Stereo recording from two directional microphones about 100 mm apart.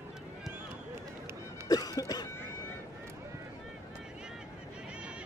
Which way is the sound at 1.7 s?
40° left (ahead or behind).